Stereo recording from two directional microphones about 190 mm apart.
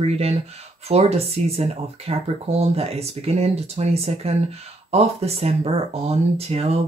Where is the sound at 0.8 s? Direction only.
35° right (ahead or behind).